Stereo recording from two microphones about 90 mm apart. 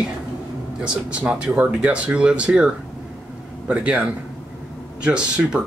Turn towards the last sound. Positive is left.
turn(degrees=-10)  # may be behind; listen again after turning